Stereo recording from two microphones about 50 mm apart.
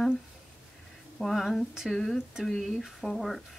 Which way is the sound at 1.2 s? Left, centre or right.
Centre.